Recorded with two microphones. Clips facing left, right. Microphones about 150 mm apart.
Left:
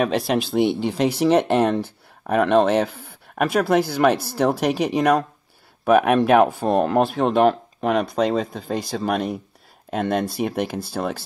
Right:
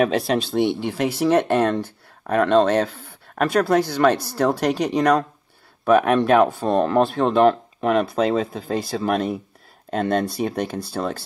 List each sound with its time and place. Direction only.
0.0 s speech: centre (ahead or behind)
0.7 s speech: 20° left (ahead or behind)